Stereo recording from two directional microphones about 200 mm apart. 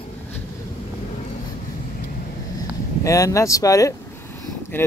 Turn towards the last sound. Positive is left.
turn(degrees=15)  # may be behind; listen again after turning